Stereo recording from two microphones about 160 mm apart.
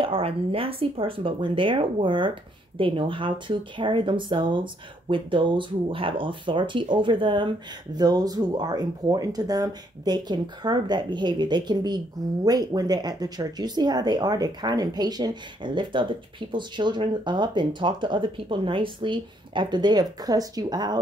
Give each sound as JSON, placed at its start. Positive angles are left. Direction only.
{"t": 0.0, "sound": "speech", "side_deg": -35}